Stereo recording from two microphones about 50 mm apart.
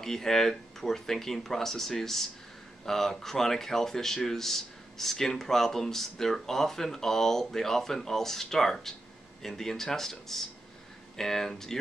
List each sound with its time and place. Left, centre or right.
0.0 s speech: centre